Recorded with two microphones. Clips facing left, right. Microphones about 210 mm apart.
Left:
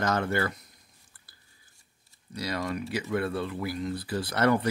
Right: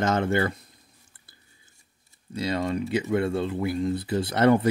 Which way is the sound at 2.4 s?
25° right (ahead or behind).